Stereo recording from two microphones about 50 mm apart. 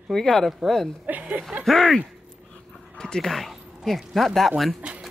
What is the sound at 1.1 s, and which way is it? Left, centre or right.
Speech, right.